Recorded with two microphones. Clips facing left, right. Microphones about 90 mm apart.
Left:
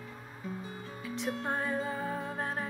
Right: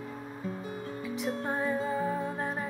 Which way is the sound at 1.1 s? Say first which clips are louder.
Right 1 dB; 5° right (ahead or behind).